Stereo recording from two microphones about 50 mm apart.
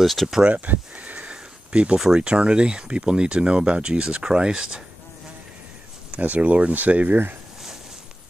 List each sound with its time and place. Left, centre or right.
0.0 s speech: centre
0.4 s a sound: right
2.1 s speech: centre
6.1 s speech: right